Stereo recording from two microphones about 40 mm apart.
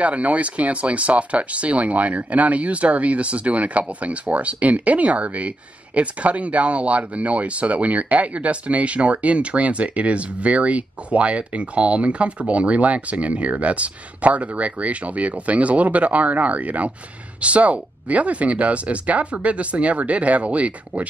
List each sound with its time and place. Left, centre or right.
0.0 s speech: right